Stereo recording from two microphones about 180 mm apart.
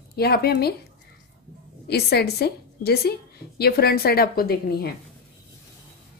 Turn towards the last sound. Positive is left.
turn(degrees=60)  # may be behind; listen again after turning